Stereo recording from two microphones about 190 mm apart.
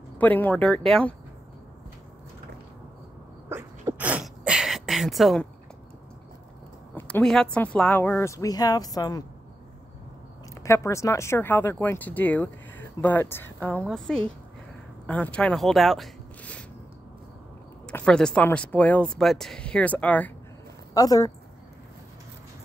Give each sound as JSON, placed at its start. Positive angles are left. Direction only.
{"t": 0.2, "sound": "speech", "side_deg": 10}
{"t": 3.4, "sound": "a sound", "side_deg": -15}
{"t": 7.0, "sound": "speech", "side_deg": 5}
{"t": 10.6, "sound": "speech", "side_deg": 15}
{"t": 17.8, "sound": "speech", "side_deg": 5}
{"t": 20.9, "sound": "speech", "side_deg": 20}